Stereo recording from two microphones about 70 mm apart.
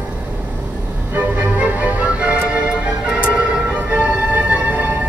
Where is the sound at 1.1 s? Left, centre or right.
Right.